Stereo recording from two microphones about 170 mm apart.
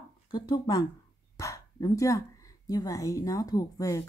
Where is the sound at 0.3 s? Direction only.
25° left (ahead or behind).